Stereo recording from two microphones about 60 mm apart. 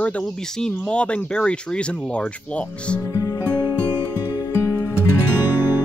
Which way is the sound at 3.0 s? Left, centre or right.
Left.